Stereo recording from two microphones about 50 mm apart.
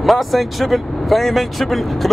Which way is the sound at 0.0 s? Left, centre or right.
Centre.